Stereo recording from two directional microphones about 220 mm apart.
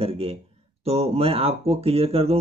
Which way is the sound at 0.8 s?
25° right (ahead or behind).